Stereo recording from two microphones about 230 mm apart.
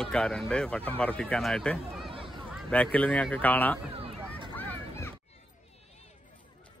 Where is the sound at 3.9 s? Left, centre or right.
Right.